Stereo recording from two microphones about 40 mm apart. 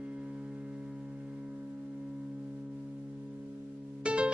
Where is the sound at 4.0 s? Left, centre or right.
Right.